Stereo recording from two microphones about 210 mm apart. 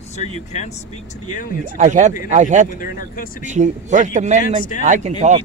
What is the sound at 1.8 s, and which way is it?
Speech, 35° right (ahead or behind).